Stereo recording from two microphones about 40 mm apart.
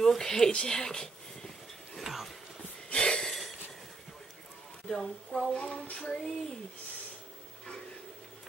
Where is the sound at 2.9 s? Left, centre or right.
Left.